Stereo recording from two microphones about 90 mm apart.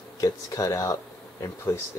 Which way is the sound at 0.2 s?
40° left (ahead or behind).